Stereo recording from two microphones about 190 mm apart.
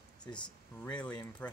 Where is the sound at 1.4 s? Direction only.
5° left (ahead or behind).